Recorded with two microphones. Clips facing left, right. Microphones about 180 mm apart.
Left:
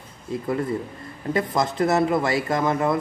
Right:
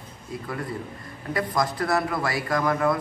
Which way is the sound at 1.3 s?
25° left (ahead or behind).